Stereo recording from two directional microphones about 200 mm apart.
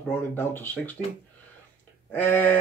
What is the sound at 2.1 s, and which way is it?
Speech, 10° left (ahead or behind).